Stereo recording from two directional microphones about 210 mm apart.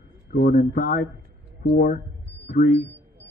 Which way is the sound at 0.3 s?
50° left (ahead or behind).